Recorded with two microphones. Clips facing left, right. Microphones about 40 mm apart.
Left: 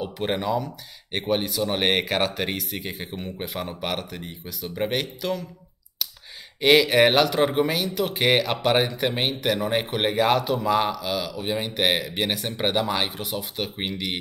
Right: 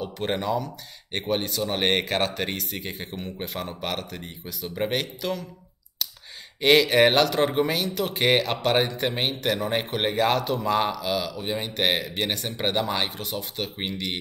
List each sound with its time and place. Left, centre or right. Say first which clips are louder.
0.0 s speech: left 1 dB; centre
6.6 s speech: left 1 dB; centre